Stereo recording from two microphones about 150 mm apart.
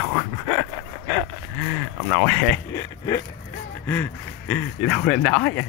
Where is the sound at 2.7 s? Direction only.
20° left (ahead or behind).